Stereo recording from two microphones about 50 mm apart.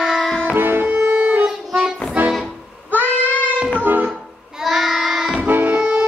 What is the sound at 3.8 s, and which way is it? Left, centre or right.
Music, right.